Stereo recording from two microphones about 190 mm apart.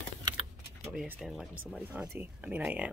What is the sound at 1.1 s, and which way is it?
Speech, centre (ahead or behind).